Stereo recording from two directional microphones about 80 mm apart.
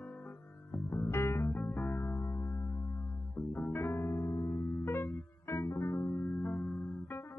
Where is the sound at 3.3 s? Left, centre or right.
Centre.